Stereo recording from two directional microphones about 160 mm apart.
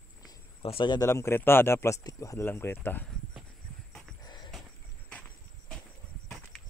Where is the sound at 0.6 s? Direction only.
35° left (ahead or behind).